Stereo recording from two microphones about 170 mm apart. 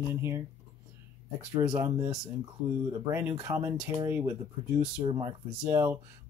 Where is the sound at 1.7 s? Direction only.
20° right (ahead or behind).